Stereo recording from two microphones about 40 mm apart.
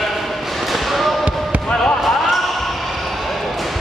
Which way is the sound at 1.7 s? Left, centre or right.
Left.